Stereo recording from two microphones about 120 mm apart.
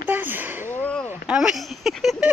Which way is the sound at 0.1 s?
15° right (ahead or behind).